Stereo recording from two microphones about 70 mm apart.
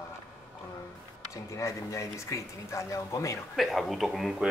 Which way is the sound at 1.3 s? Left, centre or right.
Left.